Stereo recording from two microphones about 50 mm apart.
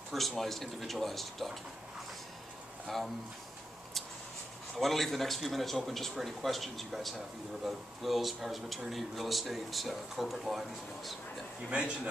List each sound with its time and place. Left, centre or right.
0.1 s speech: centre
2.9 s speech: centre
4.7 s speech: centre
11.7 s a man's voice: centre